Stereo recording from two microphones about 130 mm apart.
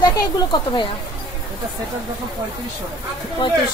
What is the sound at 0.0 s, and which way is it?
Speech, 35° left (ahead or behind).